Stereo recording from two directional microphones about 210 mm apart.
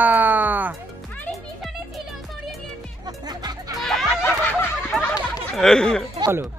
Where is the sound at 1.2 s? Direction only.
Centre (ahead or behind).